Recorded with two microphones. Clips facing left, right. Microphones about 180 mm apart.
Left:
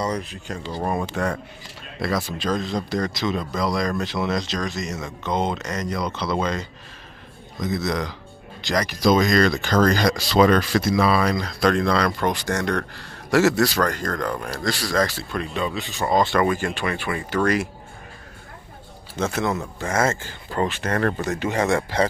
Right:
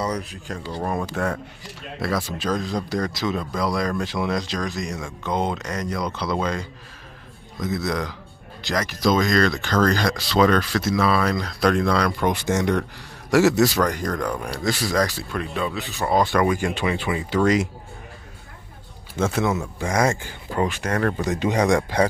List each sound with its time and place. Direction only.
0.1 s speech: centre (ahead or behind)
1.1 s speech: 5° right (ahead or behind)
2.5 s speech: 5° right (ahead or behind)
9.0 s speech: 15° left (ahead or behind); by 12.3 s 5° right (ahead or behind)
12.3 s speech: 20° right (ahead or behind)
14.3 s speech: centre (ahead or behind); by 17.6 s 20° right (ahead or behind)
19.1 s speech: 10° right (ahead or behind)